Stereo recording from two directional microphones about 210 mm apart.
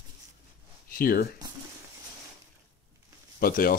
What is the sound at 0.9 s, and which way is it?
Speech, 45° left (ahead or behind).